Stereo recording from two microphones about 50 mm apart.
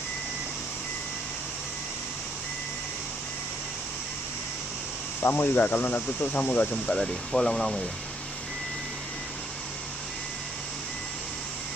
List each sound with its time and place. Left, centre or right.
5.3 s speech: left
6.9 s speech: centre